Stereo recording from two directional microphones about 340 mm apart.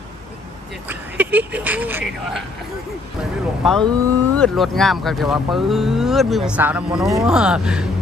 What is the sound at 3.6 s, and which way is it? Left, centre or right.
Speech, centre.